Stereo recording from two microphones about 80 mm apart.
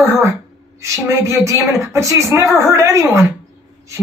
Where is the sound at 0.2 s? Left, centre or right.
Right.